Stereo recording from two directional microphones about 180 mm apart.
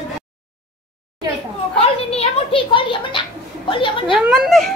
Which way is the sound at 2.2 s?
30° left (ahead or behind).